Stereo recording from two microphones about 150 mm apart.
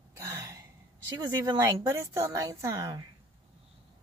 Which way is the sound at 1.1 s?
25° right (ahead or behind).